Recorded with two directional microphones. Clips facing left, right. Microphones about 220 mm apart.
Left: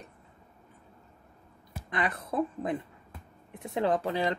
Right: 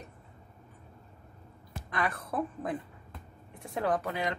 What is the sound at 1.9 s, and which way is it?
Speech, 20° left (ahead or behind).